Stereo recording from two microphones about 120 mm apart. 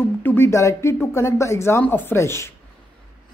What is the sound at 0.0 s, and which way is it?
Speech, 15° left (ahead or behind).